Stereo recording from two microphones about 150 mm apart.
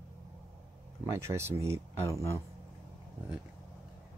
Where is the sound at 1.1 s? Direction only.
15° right (ahead or behind).